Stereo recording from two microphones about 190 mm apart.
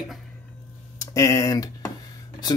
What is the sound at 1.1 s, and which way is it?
Speech, 20° left (ahead or behind).